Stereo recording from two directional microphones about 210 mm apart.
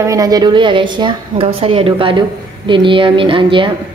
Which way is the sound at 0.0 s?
15° right (ahead or behind).